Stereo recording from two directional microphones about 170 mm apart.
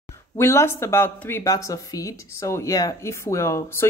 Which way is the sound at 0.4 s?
15° left (ahead or behind).